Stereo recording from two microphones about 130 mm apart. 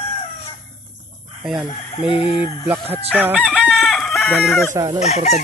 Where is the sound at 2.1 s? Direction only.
40° left (ahead or behind).